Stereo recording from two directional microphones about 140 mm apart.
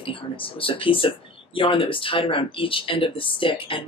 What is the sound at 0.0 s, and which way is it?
Speech, 40° left (ahead or behind).